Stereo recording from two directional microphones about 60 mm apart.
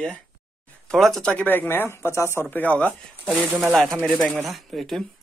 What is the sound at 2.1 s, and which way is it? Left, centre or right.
Speech, left.